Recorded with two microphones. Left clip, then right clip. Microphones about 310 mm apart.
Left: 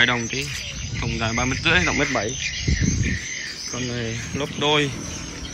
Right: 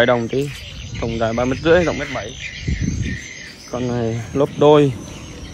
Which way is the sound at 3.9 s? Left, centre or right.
Right.